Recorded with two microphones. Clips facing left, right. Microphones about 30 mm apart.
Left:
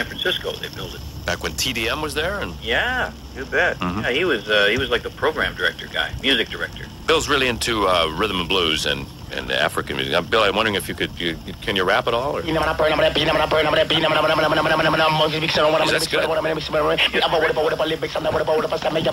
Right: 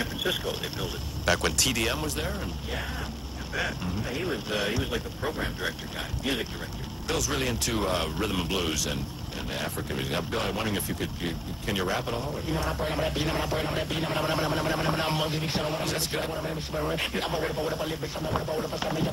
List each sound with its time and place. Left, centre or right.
0.0 s speech: left
1.2 s speech: centre
1.6 s speech: left
2.0 s speech: left
2.7 s speech: left
3.9 s speech: left
4.7 s speech: left
10.9 s speech: left